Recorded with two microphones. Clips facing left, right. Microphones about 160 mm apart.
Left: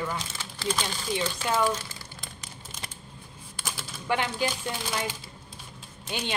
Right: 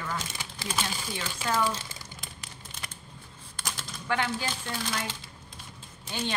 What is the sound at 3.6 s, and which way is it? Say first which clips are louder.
Typewriter: left 2 dB; 5° left (ahead or behind).